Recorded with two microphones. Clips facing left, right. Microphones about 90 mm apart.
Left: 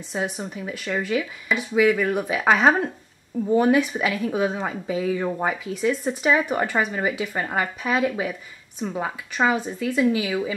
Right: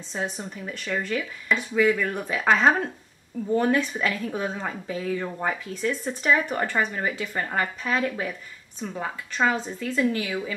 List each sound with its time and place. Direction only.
0.1 s a woman's voice: 10° left (ahead or behind)